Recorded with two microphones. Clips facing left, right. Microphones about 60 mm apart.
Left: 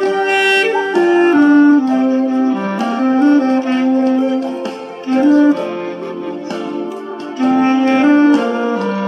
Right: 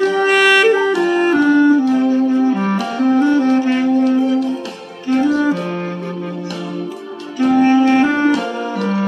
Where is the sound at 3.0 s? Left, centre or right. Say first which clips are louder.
Left 2 dB; left.